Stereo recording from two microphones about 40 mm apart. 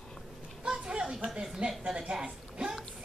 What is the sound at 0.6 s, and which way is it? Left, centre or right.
Children playing, centre.